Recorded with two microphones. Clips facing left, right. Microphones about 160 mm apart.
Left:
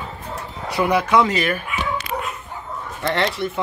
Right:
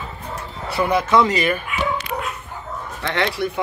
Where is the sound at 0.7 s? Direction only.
10° left (ahead or behind).